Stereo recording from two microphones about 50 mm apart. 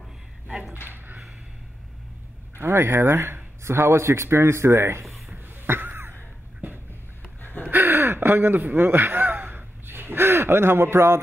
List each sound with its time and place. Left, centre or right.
0.8 s a sound: right
2.6 s speech: right
3.6 s speech: right
5.7 s a sound: right
7.4 s gasp: left
7.7 s gasp: right